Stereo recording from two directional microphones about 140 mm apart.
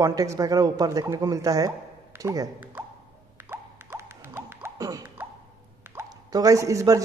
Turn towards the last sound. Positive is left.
turn(degrees=-25)  # may be behind; listen again after turning